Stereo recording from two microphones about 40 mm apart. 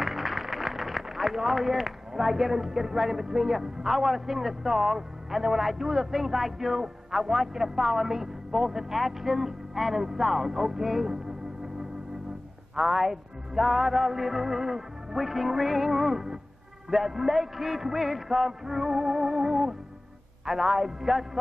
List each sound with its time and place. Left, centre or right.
0.0 s speech: centre
12.7 s music: centre
16.9 s speech: centre